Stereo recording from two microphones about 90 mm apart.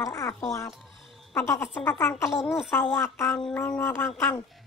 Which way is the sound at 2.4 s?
Centre (ahead or behind).